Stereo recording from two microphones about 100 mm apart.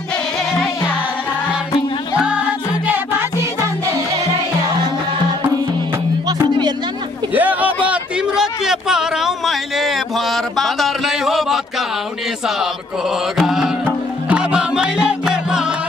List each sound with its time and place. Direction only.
2.1 s music: 10° right (ahead or behind)
7.3 s a sound: 15° right (ahead or behind)
13.4 s music: 5° right (ahead or behind)